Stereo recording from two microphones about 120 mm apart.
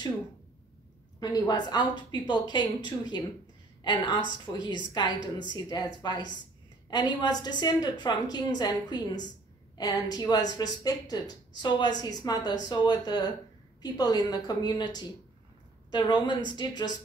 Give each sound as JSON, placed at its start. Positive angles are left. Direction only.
{"t": 1.2, "sound": "a woman's voice", "side_deg": 35}